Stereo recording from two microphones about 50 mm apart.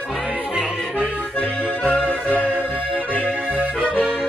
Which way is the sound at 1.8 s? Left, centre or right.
Left.